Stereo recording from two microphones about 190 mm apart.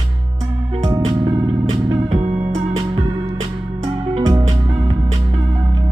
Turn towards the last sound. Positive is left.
turn(degrees=-25)  # may be behind; listen again after turning